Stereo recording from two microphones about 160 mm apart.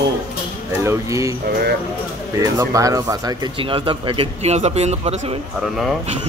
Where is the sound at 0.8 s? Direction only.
20° right (ahead or behind).